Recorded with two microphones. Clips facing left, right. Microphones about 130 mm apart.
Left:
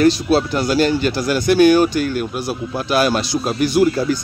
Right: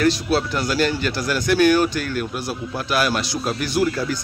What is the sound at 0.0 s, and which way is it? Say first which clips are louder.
Speech: left 5 dB; 20° left (ahead or behind).